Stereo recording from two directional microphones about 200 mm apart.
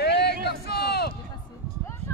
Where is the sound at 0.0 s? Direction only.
55° left (ahead or behind).